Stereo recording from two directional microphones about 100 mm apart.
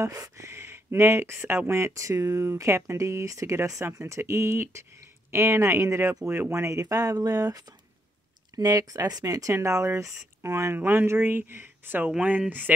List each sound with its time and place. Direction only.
0.0 s speech: 35° right (ahead or behind); by 12.7 s 15° right (ahead or behind)